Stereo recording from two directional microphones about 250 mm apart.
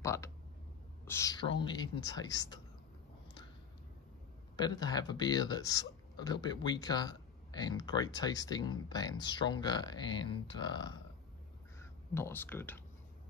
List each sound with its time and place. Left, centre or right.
0.0 s speech: centre
4.6 s speech: centre
11.8 s speech: centre